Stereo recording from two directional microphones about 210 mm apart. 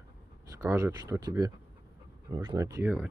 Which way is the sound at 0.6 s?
15° right (ahead or behind).